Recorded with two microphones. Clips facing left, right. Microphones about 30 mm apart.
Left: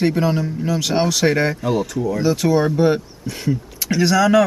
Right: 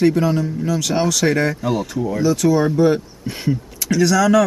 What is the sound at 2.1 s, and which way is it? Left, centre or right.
Speech, left.